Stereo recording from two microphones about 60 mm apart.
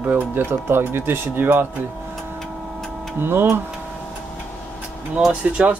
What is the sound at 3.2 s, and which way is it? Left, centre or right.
Speech, right.